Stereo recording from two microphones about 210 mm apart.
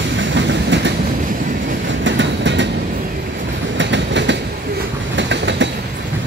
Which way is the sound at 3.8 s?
60° right (ahead or behind).